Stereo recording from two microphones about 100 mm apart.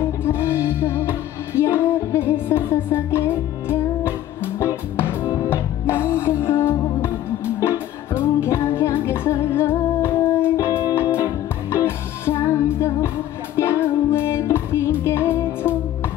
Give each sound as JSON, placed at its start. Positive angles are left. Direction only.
{"t": 0.2, "sound": "music", "side_deg": 25}